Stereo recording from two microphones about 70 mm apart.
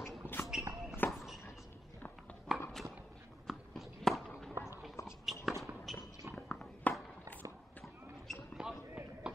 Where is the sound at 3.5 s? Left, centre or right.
Centre.